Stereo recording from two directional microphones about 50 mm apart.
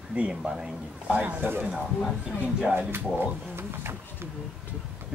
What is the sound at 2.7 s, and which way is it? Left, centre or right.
Speech, right.